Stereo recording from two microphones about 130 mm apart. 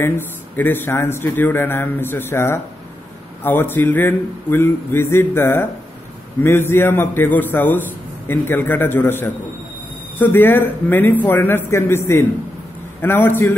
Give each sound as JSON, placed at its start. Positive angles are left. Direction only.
{"t": 0.6, "sound": "a man's voice", "side_deg": 15}